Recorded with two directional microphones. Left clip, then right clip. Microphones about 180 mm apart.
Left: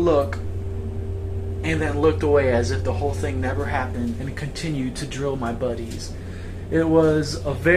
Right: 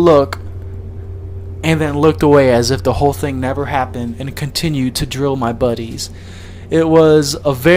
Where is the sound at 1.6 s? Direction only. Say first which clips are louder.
Right 7 dB; 45° right (ahead or behind).